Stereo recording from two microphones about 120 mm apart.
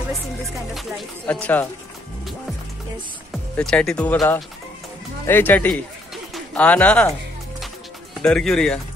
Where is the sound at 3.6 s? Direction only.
5° left (ahead or behind).